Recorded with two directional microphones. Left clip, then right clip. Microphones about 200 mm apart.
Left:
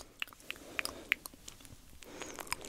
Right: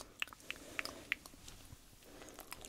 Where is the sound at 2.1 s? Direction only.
45° left (ahead or behind).